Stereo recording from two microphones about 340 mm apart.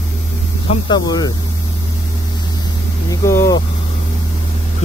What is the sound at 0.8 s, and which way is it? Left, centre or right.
Speech, centre.